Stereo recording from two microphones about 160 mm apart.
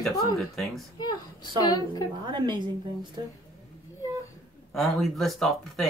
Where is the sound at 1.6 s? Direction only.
25° left (ahead or behind).